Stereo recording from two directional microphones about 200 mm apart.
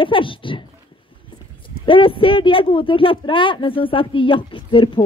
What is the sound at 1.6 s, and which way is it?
Speech, 25° left (ahead or behind).